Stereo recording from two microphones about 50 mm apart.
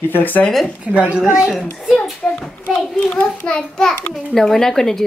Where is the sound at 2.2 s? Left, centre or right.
Centre.